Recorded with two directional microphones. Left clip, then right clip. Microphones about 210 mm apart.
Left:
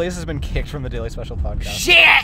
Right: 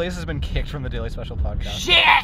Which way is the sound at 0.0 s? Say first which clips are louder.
Left 3 dB; 10° left (ahead or behind).